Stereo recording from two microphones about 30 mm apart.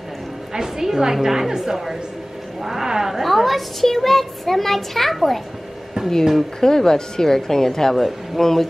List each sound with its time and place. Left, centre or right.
0.5 s a woman's voice: centre
6.0 s a sound: centre
6.6 s a woman's voice: centre